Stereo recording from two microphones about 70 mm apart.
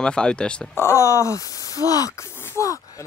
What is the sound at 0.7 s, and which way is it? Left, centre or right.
Speech, left.